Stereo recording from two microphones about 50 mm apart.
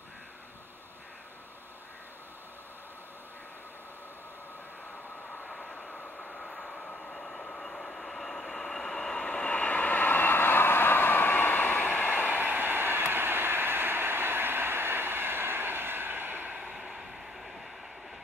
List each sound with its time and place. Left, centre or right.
5.4 s train: centre
7.1 s vehicle: centre
9.2 s vehicle: left
12.1 s train: right
16.7 s vehicle: centre